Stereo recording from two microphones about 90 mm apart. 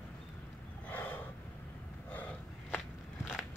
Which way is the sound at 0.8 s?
20° left (ahead or behind).